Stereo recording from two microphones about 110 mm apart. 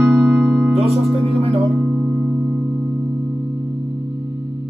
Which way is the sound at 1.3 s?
65° right (ahead or behind).